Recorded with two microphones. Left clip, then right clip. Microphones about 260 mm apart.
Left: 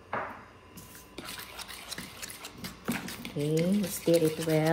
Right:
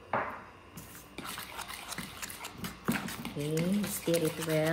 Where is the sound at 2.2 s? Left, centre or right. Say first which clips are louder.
Right 1 dB; centre.